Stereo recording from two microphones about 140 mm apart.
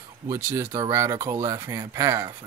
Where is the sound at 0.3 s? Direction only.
15° right (ahead or behind).